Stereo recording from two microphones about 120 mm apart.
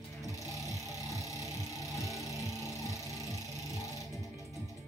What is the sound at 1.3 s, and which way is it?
Music, 25° left (ahead or behind).